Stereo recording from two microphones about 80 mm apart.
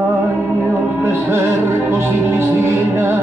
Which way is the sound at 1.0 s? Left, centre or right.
Right.